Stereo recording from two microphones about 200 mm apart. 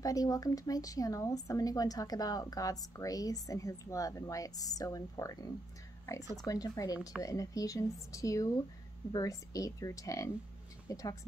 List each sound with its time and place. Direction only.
0.0 s speech: 20° left (ahead or behind)